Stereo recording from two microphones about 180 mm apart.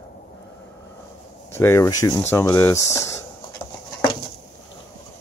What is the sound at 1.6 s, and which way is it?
Speech, 15° left (ahead or behind).